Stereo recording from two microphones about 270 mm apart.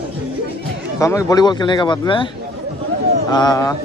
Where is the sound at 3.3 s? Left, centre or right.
Centre.